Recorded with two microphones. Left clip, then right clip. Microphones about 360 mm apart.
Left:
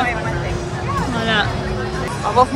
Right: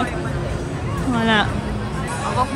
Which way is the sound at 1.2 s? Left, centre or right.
Centre.